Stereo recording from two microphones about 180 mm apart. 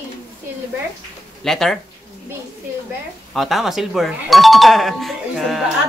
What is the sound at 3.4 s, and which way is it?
Speech, centre (ahead or behind).